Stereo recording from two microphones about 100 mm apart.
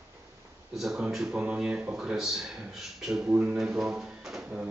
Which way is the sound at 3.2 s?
15° right (ahead or behind).